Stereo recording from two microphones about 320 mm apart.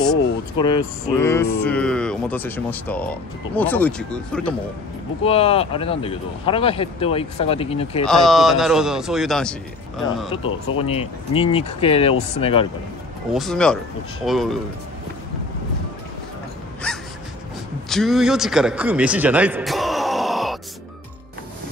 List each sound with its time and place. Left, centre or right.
0.6 s speech: centre
5.2 s speech: centre
8.1 s speech: centre
10.8 s speech: centre
13.3 s speech: centre
16.8 s gasp: centre
17.8 s a man's voice: centre